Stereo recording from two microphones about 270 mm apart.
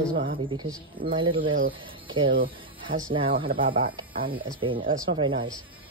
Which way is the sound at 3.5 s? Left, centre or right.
Right.